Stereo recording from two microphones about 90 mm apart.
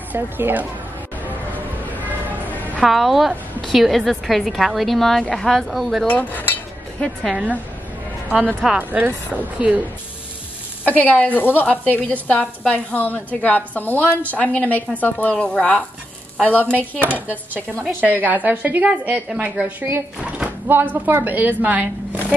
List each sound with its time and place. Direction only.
0.1 s a woman's voice: 20° right (ahead or behind)
2.8 s a woman's voice: centre (ahead or behind)
6.0 s speech: 15° left (ahead or behind)
8.3 s a woman's voice: 15° right (ahead or behind)
10.8 s speech: 20° left (ahead or behind)
17.0 s a woman's voice: 20° right (ahead or behind)